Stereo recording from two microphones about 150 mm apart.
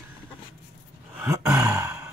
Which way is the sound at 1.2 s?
20° right (ahead or behind).